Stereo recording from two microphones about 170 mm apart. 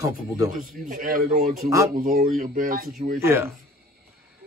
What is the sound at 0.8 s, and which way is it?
A man's voice, 55° right (ahead or behind).